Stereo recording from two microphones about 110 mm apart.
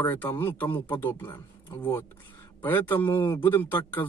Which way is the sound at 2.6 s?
15° left (ahead or behind).